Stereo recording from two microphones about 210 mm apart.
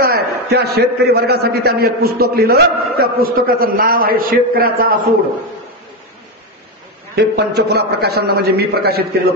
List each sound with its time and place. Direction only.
0.0 s a man's voice: 50° right (ahead or behind)
7.2 s a man's voice: 50° right (ahead or behind)